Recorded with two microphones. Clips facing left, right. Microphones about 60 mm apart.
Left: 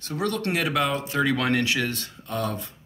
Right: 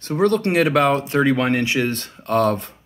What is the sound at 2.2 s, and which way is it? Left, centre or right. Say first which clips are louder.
Speech: right 11 dB; right.